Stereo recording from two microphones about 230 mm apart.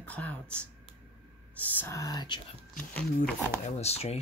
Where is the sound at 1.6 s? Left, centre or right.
Centre.